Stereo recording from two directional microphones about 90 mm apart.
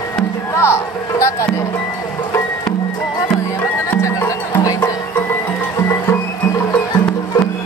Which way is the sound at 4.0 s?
35° left (ahead or behind).